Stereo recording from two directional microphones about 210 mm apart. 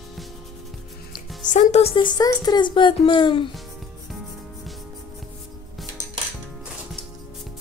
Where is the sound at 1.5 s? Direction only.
35° left (ahead or behind).